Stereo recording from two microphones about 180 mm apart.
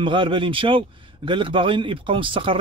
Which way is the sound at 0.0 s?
25° right (ahead or behind).